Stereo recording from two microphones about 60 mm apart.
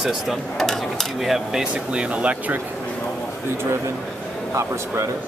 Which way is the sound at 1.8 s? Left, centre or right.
Centre.